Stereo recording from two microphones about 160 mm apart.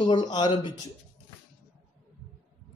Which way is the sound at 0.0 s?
25° left (ahead or behind).